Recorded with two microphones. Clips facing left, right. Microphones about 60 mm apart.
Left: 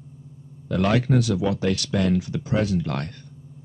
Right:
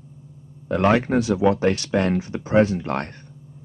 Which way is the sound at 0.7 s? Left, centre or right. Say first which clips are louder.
Right 3 dB; right.